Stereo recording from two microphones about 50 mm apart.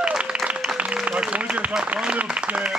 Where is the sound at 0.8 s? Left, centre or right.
Right.